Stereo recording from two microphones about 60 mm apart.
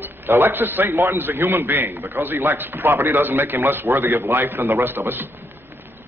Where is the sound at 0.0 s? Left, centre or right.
Right.